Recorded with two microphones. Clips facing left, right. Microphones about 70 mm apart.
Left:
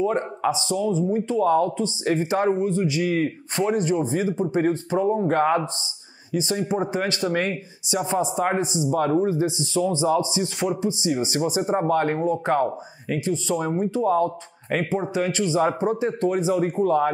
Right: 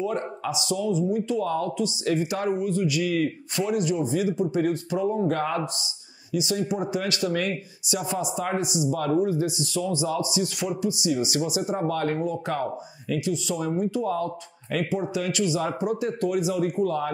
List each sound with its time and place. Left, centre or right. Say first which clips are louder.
0.0 s speech: left 5 dB; left
6.7 s speech: left 3 dB; left